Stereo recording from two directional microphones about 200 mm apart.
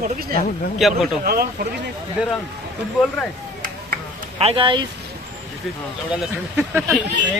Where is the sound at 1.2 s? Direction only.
50° right (ahead or behind).